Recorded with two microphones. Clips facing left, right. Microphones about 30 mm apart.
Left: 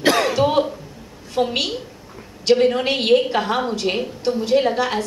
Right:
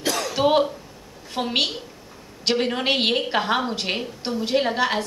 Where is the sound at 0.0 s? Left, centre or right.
Left.